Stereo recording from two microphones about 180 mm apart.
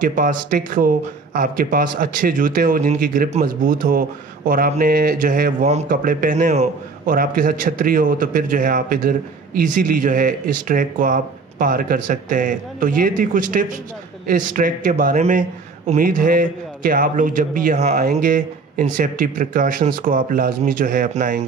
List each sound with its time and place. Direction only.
0.0 s a man's voice: 50° right (ahead or behind)
7.1 s a man's voice: 50° right (ahead or behind)